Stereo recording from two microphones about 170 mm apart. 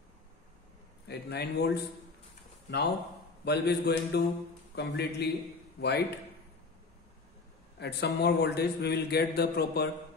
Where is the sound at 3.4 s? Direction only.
75° left (ahead or behind).